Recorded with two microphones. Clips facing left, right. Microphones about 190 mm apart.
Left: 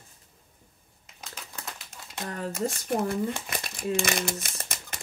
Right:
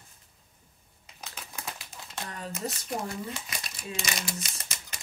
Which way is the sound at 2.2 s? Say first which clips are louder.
Left 7 dB; 50° left (ahead or behind).